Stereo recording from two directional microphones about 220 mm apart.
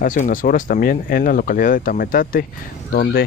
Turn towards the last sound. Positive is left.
turn(degrees=40)  # may be behind; listen again after turning